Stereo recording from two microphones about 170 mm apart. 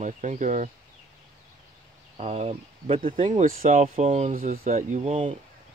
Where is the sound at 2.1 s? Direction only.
40° right (ahead or behind).